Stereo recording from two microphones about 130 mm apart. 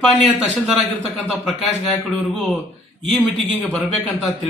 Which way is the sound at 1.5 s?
5° left (ahead or behind).